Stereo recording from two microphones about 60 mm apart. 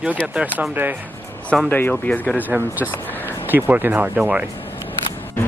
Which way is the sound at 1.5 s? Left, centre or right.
Centre.